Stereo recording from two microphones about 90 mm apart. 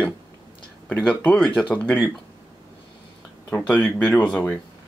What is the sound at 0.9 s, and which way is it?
Speech, 15° left (ahead or behind).